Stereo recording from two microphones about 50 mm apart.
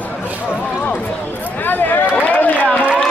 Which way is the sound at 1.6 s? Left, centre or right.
Left.